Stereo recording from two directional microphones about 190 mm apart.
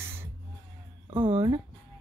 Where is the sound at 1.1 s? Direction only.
25° right (ahead or behind).